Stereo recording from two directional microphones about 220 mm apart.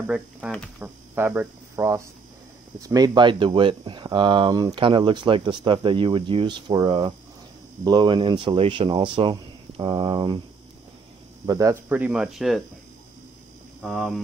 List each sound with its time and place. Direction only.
0.0 s speech: 5° right (ahead or behind)
11.4 s speech: 15° right (ahead or behind)
13.8 s speech: centre (ahead or behind)